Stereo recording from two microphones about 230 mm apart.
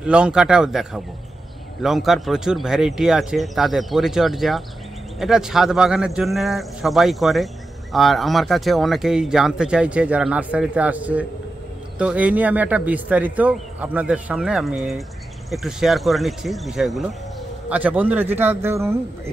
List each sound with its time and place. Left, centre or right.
0.0 s a man's voice: centre